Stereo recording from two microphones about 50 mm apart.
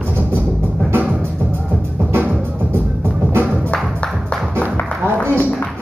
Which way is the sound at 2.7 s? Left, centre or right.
Right.